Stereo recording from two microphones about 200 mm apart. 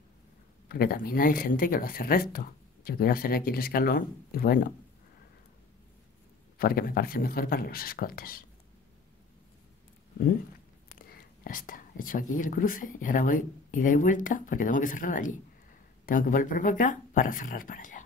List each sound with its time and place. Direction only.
0.7 s speech: 50° left (ahead or behind)
6.6 s speech: 45° left (ahead or behind)
11.0 s speech: 45° left (ahead or behind)